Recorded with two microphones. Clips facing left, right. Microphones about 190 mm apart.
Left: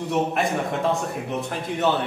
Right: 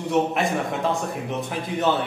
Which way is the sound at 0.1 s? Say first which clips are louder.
Right 2 dB; centre (ahead or behind).